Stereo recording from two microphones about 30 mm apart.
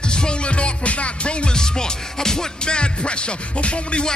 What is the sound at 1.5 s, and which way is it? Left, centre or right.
Music, left.